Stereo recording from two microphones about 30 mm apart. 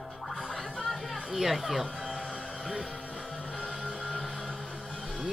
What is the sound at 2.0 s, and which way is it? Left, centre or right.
Music, centre.